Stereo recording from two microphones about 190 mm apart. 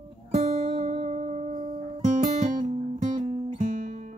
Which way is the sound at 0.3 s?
35° right (ahead or behind).